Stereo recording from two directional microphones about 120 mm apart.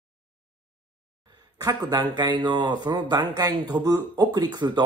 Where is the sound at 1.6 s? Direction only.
35° right (ahead or behind).